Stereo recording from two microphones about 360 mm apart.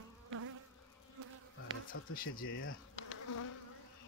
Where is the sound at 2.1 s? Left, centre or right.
Left.